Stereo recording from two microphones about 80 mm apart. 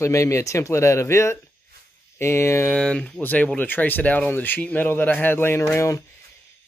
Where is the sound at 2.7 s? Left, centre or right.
Centre.